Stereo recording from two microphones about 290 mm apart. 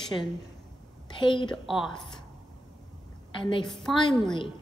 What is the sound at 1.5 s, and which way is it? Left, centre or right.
Speech, centre.